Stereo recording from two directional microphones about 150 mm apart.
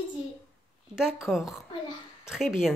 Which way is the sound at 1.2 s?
Centre (ahead or behind).